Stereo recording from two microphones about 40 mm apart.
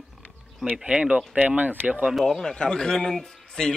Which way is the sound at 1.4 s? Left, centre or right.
Right.